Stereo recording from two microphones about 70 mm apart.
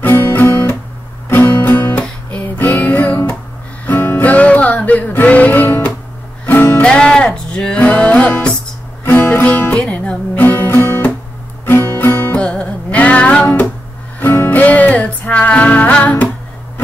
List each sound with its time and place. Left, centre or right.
0.0 s guitar: left
1.3 s music: left
6.8 s music: centre
10.3 s music: left
12.4 s music: centre
14.2 s music: left